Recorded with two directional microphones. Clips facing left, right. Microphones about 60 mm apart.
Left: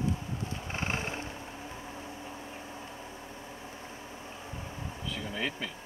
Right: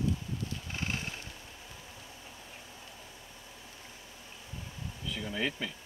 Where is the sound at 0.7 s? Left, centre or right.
Left.